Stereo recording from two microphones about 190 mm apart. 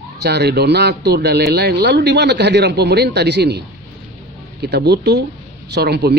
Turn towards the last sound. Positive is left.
turn(degrees=-60)  # may be behind; listen again after turning